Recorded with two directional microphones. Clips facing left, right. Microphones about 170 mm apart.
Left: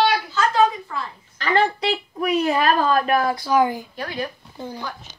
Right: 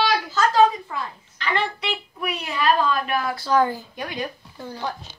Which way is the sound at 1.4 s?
40° left (ahead or behind).